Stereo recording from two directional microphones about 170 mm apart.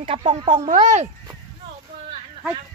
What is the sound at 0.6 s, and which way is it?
Speech, 45° right (ahead or behind).